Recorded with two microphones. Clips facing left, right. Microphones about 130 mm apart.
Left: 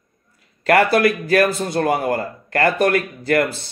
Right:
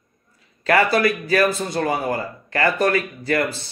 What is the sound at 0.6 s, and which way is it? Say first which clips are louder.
A man's voice: left 3 dB; 55° left (ahead or behind).